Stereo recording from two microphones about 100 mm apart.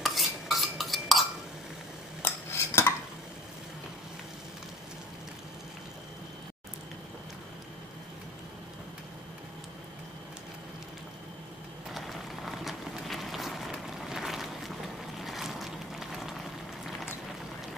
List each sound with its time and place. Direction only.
0.0 s cutlery: centre (ahead or behind)
2.2 s cutlery: 25° left (ahead or behind)
11.9 s a sound: centre (ahead or behind)